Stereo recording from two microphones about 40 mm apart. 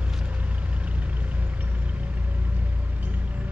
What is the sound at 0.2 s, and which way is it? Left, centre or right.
Vehicle, right.